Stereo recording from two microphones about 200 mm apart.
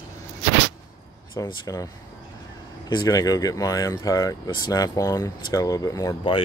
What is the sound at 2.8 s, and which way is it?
Speech, 20° left (ahead or behind).